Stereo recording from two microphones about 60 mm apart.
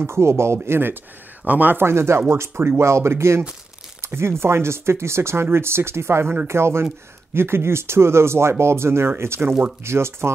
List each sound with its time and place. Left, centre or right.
0.0 s speech: right
1.4 s speech: right
1.8 s speech: right